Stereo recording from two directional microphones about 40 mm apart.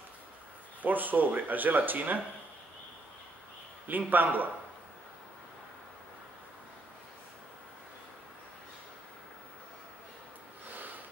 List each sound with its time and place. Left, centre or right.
0.8 s speech: right
3.8 s speech: right